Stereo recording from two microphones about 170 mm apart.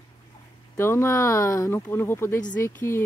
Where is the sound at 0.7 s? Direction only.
15° left (ahead or behind).